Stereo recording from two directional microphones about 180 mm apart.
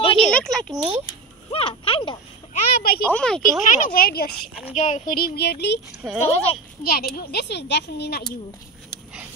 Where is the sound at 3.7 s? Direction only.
55° left (ahead or behind).